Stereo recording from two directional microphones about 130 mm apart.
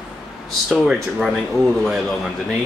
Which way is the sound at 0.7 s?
Centre (ahead or behind).